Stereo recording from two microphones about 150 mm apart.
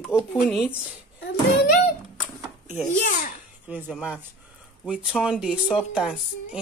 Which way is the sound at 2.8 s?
60° left (ahead or behind).